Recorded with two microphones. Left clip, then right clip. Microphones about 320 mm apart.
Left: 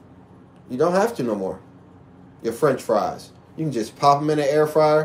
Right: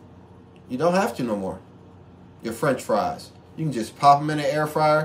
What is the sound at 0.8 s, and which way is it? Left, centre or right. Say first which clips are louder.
Speech: left 2 dB; centre.